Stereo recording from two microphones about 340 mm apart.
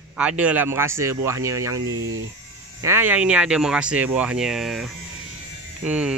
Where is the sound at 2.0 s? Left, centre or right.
Right.